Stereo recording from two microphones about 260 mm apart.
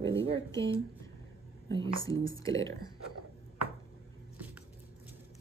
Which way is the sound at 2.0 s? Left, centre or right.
Centre.